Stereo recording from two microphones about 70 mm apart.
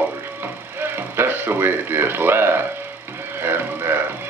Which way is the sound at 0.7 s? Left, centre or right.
Right.